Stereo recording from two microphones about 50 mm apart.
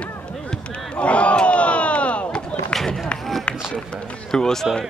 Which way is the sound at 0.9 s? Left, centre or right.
Left.